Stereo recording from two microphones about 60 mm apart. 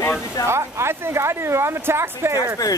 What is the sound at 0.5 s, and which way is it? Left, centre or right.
A woman's voice, right.